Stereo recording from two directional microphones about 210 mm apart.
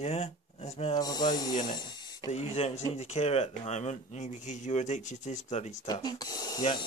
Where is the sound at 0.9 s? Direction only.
20° left (ahead or behind).